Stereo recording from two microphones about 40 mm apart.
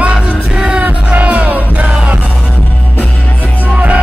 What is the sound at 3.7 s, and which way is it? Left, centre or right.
Music, right.